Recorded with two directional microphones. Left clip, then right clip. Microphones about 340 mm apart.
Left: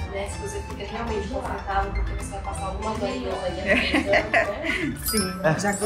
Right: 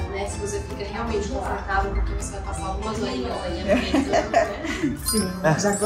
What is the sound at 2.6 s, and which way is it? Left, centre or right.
Speech, centre.